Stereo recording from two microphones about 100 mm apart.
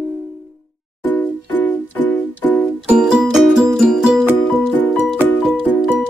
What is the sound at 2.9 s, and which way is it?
Music, 5° right (ahead or behind).